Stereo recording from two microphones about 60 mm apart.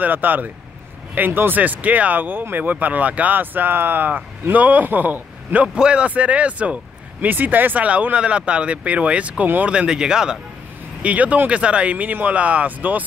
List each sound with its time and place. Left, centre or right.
0.0 s speech: right
5.8 s speech: centre
11.0 s speech: right